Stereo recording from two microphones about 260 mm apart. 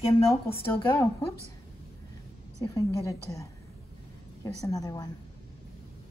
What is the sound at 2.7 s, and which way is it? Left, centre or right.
A woman's voice, centre.